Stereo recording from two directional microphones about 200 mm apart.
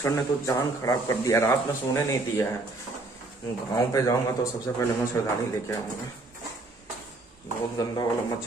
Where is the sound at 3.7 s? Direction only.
15° left (ahead or behind).